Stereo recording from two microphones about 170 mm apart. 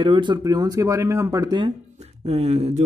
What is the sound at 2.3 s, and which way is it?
Speech, 40° right (ahead or behind).